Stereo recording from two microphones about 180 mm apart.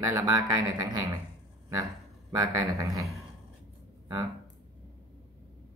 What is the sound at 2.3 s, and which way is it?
Speech, 20° right (ahead or behind).